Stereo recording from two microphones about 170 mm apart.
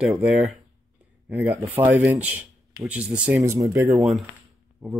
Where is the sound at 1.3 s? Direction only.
15° right (ahead or behind).